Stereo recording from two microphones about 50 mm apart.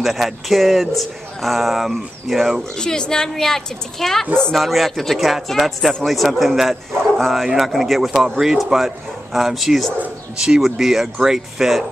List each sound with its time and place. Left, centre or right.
0.0 s speech: centre
2.8 s a woman's voice: centre
10.3 s speech: centre